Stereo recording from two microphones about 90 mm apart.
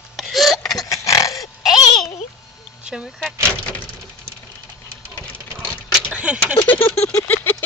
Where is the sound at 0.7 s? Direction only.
40° left (ahead or behind).